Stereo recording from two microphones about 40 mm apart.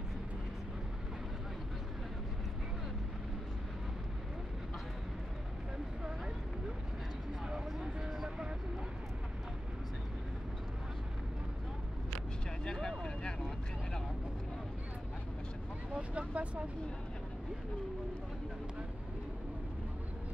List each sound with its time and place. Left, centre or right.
12.6 s vehicle: centre
15.9 s vehicle: right